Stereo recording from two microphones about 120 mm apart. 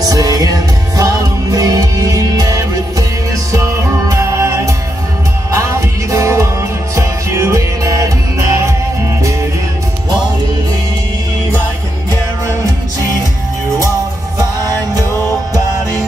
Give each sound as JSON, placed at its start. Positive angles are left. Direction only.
{"t": 0.0, "sound": "music", "side_deg": -30}